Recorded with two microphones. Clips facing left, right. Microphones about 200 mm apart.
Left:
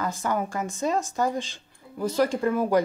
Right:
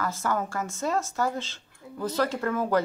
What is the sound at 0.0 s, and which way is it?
Speech, 15° left (ahead or behind).